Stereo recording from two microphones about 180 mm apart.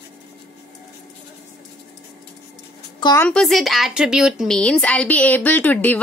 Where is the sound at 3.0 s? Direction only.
20° left (ahead or behind).